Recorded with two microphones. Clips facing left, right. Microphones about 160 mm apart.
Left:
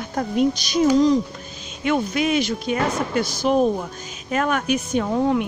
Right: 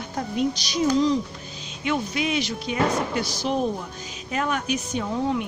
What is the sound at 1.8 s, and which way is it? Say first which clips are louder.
A woman's voice: left 5 dB; 55° left (ahead or behind).